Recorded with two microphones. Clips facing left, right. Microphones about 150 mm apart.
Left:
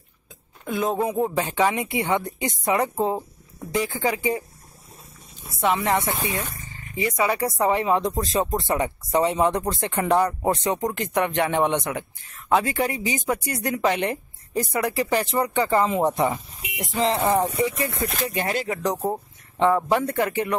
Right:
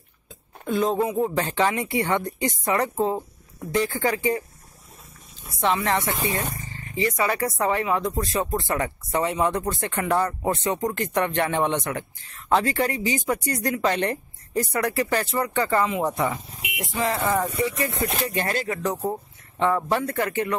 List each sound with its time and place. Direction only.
0.7 s speech: 10° left (ahead or behind)
5.6 s speech: 15° left (ahead or behind)